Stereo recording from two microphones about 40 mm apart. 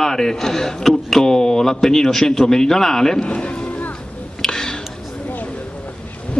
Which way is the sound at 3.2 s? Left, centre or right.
Left.